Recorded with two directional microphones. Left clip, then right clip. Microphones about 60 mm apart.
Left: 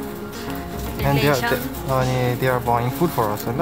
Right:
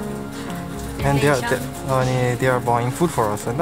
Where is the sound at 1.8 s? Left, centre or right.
Centre.